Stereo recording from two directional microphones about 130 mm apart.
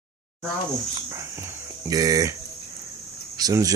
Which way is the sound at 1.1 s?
20° right (ahead or behind).